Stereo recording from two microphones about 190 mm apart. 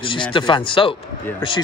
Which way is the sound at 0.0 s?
25° left (ahead or behind).